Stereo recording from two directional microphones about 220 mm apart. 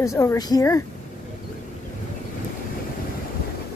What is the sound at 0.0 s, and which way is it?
Speech, 15° left (ahead or behind).